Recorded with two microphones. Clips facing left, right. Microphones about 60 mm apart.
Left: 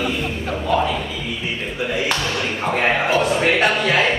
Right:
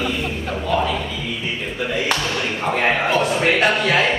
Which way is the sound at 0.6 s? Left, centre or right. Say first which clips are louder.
Left 1 dB; centre.